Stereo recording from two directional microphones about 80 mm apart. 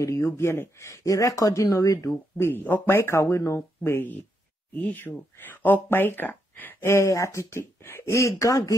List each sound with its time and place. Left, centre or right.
0.0 s speech: left
2.3 s speech: left
3.0 s speech: left
6.9 s speech: left